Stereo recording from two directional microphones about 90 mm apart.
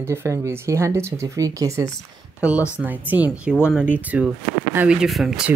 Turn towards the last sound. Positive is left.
turn(degrees=0)  # may be behind; listen again after turning